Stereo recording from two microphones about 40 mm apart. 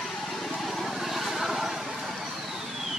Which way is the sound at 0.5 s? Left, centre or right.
Centre.